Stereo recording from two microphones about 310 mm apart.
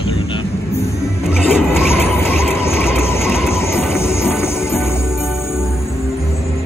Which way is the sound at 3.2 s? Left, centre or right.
Centre.